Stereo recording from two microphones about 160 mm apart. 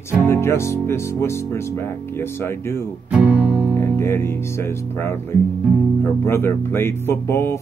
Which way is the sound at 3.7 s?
15° left (ahead or behind).